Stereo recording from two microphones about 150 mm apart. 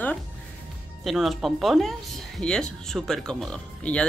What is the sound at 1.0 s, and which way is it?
Speech, centre (ahead or behind).